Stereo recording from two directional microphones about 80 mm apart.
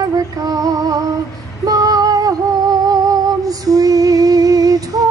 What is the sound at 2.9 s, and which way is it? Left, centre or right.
Music, right.